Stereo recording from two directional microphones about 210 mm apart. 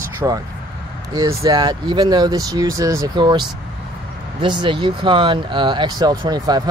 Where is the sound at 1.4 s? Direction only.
20° right (ahead or behind).